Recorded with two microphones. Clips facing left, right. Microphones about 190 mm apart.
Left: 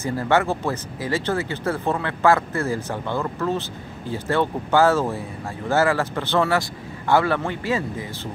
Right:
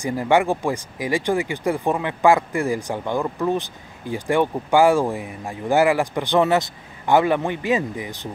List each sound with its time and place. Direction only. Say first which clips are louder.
0.0 s speech: right 2 dB; 15° right (ahead or behind)